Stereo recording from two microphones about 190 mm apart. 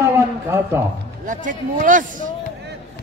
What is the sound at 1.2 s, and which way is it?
Speech, 45° right (ahead or behind).